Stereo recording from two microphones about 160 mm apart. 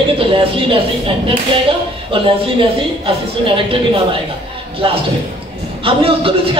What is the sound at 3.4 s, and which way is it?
Speech, 35° right (ahead or behind).